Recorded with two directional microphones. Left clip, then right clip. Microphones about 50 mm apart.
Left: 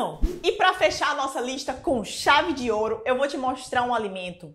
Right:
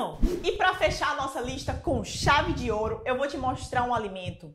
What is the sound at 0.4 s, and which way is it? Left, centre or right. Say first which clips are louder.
A woman's voice: left 4 dB; left.